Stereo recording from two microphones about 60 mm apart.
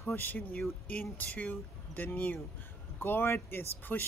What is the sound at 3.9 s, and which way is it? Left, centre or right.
Speech, left.